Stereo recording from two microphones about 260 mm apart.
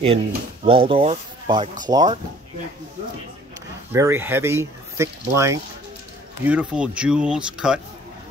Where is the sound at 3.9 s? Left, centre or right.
Centre.